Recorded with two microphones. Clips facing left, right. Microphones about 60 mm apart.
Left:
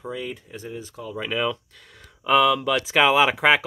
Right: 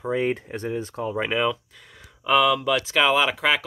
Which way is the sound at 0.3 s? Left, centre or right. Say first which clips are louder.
Right 8 dB; right.